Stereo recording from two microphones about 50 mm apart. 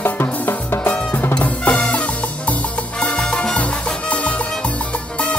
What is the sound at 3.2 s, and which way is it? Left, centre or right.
Salsa music, centre.